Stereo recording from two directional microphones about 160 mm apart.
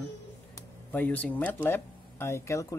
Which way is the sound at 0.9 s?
10° left (ahead or behind).